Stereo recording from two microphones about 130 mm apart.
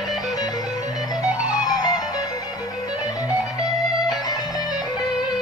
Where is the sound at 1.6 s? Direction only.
30° left (ahead or behind).